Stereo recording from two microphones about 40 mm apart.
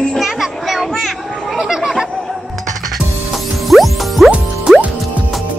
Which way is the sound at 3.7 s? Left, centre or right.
Centre.